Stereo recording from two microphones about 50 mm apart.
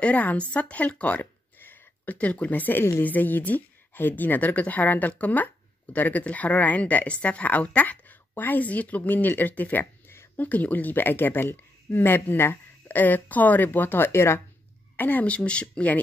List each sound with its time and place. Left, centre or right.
0.0 s speech: left
1.2 s a sound: left
2.1 s a woman's voice: left
15.0 s speech: left